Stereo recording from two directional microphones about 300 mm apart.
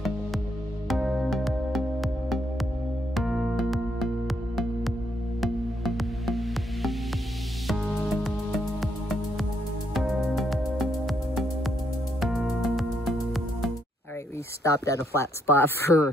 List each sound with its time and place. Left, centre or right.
0.8 s music: centre
5.4 s music: centre
14.6 s speech: centre